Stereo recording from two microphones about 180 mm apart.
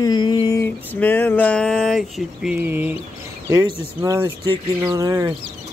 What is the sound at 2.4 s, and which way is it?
Speech, 10° right (ahead or behind).